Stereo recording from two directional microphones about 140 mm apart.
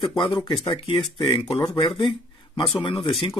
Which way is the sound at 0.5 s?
45° left (ahead or behind).